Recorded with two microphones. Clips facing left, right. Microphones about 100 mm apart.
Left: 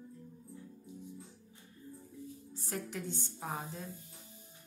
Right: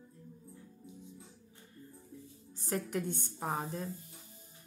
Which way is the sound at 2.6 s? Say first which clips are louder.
Right 5 dB; 50° right (ahead or behind).